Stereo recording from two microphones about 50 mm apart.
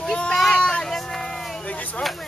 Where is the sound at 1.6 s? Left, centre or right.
Left.